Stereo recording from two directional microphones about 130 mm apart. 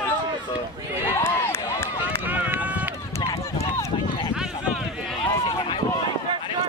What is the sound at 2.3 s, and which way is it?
Run, 15° right (ahead or behind).